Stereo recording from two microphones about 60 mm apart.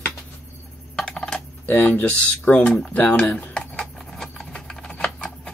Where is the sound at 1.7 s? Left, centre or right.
Left.